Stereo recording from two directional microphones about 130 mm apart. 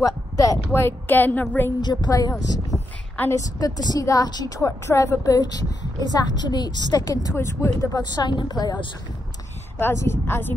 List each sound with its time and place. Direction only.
0.0 s speech: 25° left (ahead or behind)
0.7 s a woman's voice: 15° left (ahead or behind)
1.8 s a woman's voice: 35° left (ahead or behind)
2.7 s a sound: 10° right (ahead or behind)
3.2 s a woman's voice: 25° left (ahead or behind)
9.8 s a woman's voice: 15° left (ahead or behind)